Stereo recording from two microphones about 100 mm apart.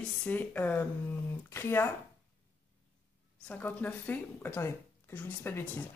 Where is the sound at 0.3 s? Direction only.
15° left (ahead or behind).